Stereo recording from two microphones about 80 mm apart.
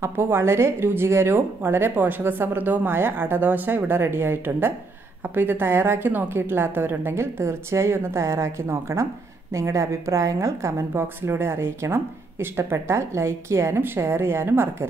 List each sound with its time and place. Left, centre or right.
0.0 s a woman's voice: right